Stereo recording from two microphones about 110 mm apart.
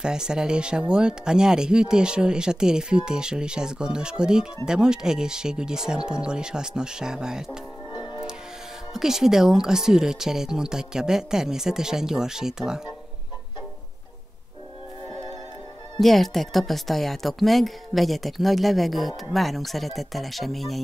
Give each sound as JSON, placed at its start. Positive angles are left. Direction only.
{"t": 0.0, "sound": "speech", "side_deg": -5}
{"t": 7.9, "sound": "music", "side_deg": 45}
{"t": 8.9, "sound": "speech", "side_deg": -5}
{"t": 16.0, "sound": "speech", "side_deg": 0}